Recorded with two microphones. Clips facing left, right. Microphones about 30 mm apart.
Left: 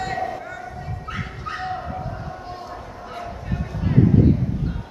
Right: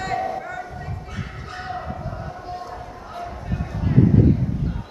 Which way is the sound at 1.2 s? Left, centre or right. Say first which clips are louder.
Left 5 dB; centre.